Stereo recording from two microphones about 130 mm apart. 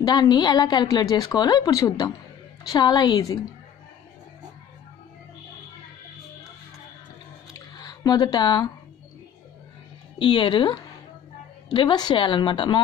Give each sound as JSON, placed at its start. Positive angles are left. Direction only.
{"t": 0.0, "sound": "a woman's voice", "side_deg": 35}
{"t": 7.5, "sound": "squish", "side_deg": 30}
{"t": 10.1, "sound": "a woman's voice", "side_deg": 40}